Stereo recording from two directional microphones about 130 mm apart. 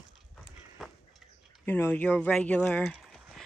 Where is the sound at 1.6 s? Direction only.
15° left (ahead or behind).